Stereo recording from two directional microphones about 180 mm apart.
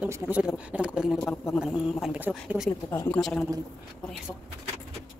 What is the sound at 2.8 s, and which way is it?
Speech, 15° left (ahead or behind).